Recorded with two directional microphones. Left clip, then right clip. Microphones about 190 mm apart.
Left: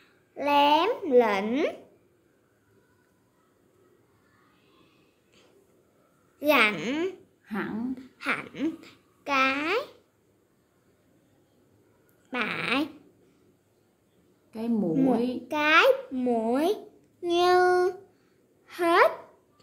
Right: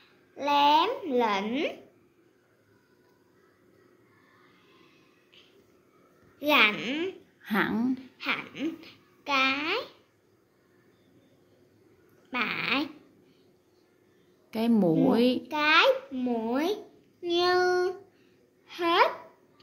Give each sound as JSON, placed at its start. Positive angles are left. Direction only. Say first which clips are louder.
{"t": 0.4, "sound": "a child's voice", "louder": "left 1 dB", "side_deg": 40}
{"t": 6.4, "sound": "a child's voice", "louder": "even", "side_deg": 40}
{"t": 7.4, "sound": "speech", "louder": "right 6 dB", "side_deg": -40}
{"t": 8.2, "sound": "a woman's voice", "louder": "left 4 dB", "side_deg": 40}
{"t": 12.3, "sound": "a child's voice", "louder": "even", "side_deg": 35}
{"t": 14.5, "sound": "a woman's voice", "louder": "right 4 dB", "side_deg": -35}
{"t": 15.4, "sound": "a child's voice", "louder": "left 4 dB", "side_deg": 40}